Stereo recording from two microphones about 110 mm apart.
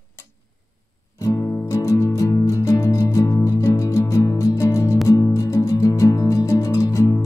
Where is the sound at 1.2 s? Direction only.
30° left (ahead or behind).